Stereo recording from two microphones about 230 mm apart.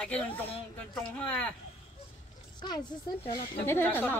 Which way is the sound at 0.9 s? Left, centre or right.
Centre.